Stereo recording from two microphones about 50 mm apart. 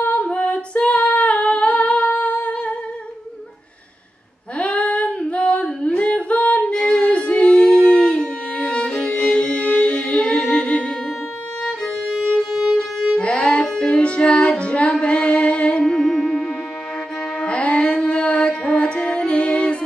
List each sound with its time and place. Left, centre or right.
0.0 s female singing: left
4.6 s female singing: left
6.7 s music: left
11.8 s music: centre
13.2 s music: left